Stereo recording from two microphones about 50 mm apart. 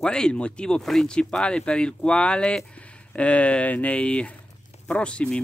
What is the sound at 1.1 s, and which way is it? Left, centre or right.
Speech, centre.